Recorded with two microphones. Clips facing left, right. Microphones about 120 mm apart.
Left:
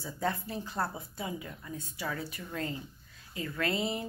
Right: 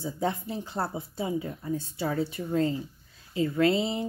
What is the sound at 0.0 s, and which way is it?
Speech, 25° right (ahead or behind).